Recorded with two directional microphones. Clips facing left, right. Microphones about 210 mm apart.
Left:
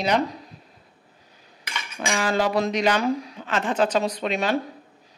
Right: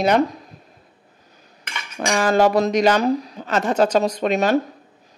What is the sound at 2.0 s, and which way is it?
Speech, 45° right (ahead or behind).